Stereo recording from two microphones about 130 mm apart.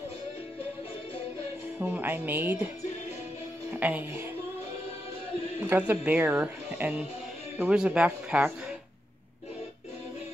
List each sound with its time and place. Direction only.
1.8 s speech: 15° right (ahead or behind)
3.7 s speech: 15° right (ahead or behind)
5.6 s speech: 15° right (ahead or behind)